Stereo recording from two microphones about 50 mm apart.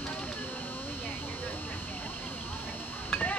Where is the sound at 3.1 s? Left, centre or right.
Left.